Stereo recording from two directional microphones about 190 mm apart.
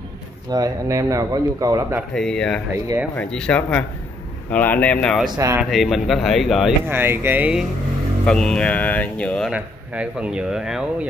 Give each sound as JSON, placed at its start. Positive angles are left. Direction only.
{"t": 0.5, "sound": "speech", "side_deg": -15}
{"t": 2.1, "sound": "speech", "side_deg": 5}
{"t": 5.3, "sound": "speech", "side_deg": -15}
{"t": 5.6, "sound": "speech", "side_deg": 0}
{"t": 6.9, "sound": "speech", "side_deg": -10}
{"t": 8.3, "sound": "speech", "side_deg": 5}
{"t": 9.5, "sound": "speech", "side_deg": -5}